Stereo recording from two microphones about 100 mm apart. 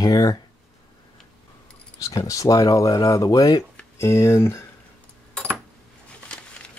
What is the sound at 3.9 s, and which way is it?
Speech, 30° left (ahead or behind).